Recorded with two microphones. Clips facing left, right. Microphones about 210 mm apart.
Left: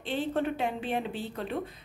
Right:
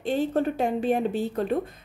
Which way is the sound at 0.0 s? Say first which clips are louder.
Right 6 dB; 45° right (ahead or behind).